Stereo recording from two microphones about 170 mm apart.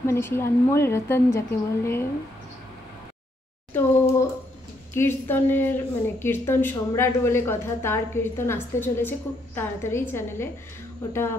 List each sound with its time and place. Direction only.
0.0 s a woman's voice: 15° left (ahead or behind)
3.7 s a woman's voice: 15° left (ahead or behind)